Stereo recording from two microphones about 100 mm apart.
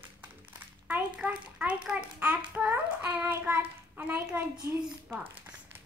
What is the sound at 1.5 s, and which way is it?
A child's voice, 10° right (ahead or behind).